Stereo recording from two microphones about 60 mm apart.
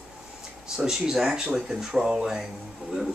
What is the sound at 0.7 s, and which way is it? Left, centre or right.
A man's voice, centre.